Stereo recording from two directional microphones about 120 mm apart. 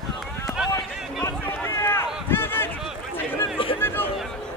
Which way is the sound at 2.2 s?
20° left (ahead or behind).